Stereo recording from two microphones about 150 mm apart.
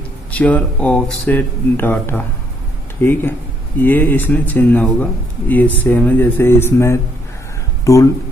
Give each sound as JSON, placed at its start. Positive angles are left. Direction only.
{"t": 0.3, "sound": "speech", "side_deg": 10}